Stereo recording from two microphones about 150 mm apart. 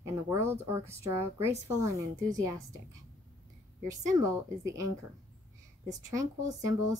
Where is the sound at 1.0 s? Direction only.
20° right (ahead or behind).